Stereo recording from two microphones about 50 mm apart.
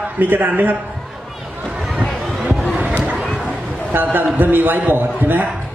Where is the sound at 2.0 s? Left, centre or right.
Centre.